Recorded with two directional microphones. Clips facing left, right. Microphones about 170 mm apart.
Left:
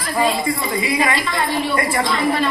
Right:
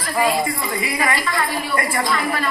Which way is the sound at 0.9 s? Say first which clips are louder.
Left 1 dB; 25° left (ahead or behind).